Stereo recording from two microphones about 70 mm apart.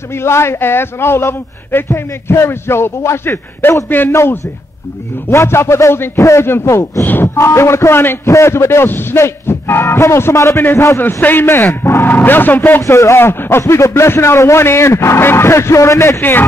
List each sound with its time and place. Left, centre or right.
0.1 s a man's voice: left
12.8 s a man's voice: left
16.2 s speech: left